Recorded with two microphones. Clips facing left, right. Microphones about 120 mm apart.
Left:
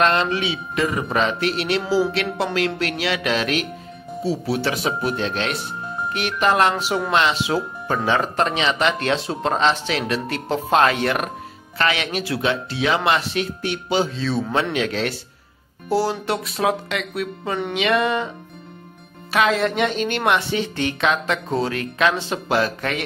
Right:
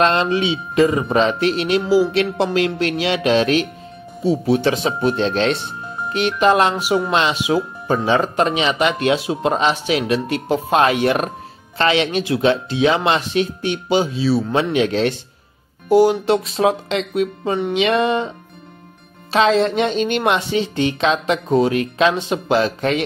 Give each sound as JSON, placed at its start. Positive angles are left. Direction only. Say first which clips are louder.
{"t": 0.0, "sound": "speech", "louder": "right 3 dB", "side_deg": -25}
{"t": 14.6, "sound": "speech", "louder": "right 5 dB", "side_deg": -20}
{"t": 19.3, "sound": "speech", "louder": "right 4 dB", "side_deg": -25}